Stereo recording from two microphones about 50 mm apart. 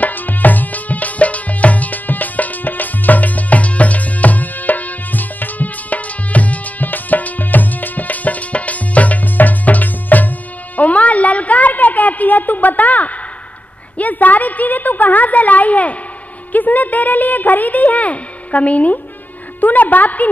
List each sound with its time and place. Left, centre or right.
0.0 s music: left
10.8 s a sound: left
19.6 s music: left